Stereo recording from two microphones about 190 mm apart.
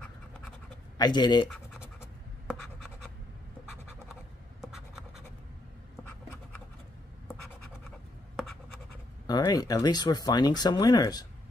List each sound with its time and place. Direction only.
0.9 s speech: 20° left (ahead or behind)
4.1 s scratch: centre (ahead or behind)
9.3 s speech: 20° left (ahead or behind)